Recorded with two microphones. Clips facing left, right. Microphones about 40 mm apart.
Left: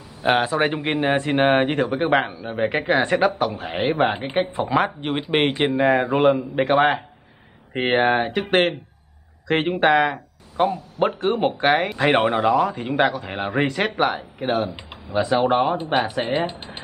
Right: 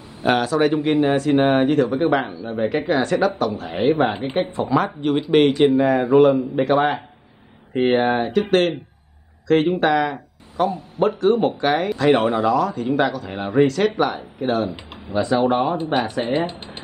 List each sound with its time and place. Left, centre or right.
0.2 s speech: left
4.6 s speech: left
14.4 s speech: centre
15.8 s speech: centre